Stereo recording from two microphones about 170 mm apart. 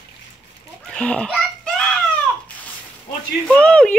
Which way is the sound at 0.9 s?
5° left (ahead or behind).